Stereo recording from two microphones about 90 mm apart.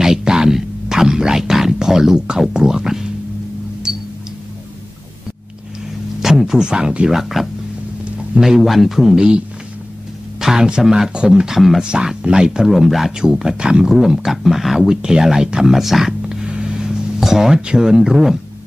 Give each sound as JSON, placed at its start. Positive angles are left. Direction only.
{"t": 0.0, "sound": "music", "side_deg": -5}
{"t": 6.2, "sound": "a man's voice", "side_deg": -5}
{"t": 10.4, "sound": "speech", "side_deg": -5}